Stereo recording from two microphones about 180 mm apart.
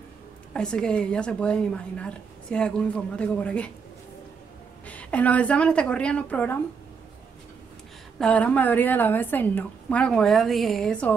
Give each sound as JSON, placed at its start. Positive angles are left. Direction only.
{"t": 0.5, "sound": "a woman's voice", "side_deg": 5}
{"t": 4.8, "sound": "a woman's voice", "side_deg": 10}
{"t": 8.2, "sound": "a woman's voice", "side_deg": 5}